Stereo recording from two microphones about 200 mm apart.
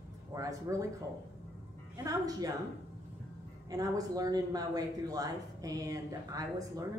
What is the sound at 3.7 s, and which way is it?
Speech, 20° right (ahead or behind).